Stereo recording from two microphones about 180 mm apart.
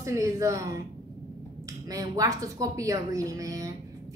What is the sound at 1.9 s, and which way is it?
A woman's voice, 20° right (ahead or behind).